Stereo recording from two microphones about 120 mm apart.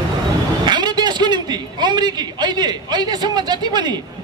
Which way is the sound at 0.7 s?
35° right (ahead or behind).